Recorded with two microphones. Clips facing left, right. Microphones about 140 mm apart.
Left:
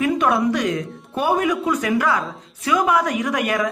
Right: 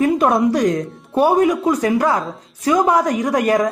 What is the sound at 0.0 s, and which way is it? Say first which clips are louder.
Speech: right 4 dB; 40° right (ahead or behind).